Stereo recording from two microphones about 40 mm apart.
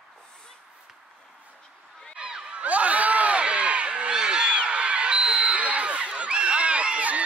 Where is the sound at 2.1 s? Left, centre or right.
Right.